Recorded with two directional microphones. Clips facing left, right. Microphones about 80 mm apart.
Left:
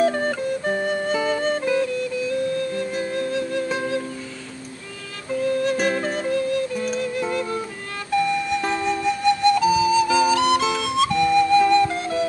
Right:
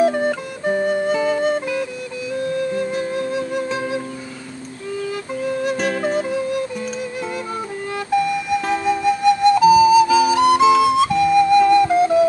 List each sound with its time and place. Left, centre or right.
0.0 s music: centre
5.4 s music: centre
5.8 s music: centre
8.5 s flute: centre